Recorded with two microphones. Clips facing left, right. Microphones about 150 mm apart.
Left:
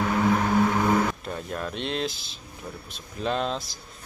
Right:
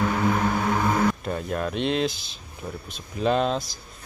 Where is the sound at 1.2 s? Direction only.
5° right (ahead or behind).